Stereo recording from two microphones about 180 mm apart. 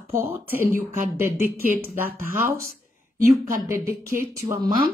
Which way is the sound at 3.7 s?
15° right (ahead or behind).